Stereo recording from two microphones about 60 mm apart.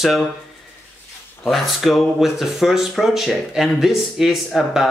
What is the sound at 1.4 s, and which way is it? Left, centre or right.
Speech, centre.